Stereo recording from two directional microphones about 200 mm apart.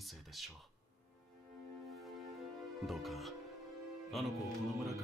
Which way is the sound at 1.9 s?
Centre (ahead or behind).